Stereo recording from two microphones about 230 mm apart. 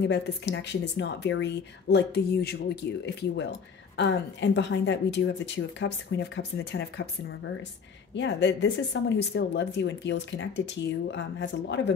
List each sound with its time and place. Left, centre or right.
0.0 s speech: left